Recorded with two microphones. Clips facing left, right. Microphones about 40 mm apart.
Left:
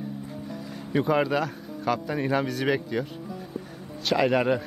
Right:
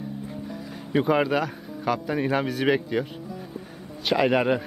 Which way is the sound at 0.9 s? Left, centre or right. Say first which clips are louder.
Right 2 dB; centre.